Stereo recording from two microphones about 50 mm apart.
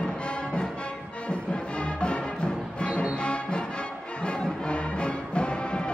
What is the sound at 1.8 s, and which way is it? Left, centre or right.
Music, left.